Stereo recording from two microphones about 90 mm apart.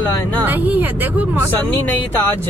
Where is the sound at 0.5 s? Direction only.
20° right (ahead or behind).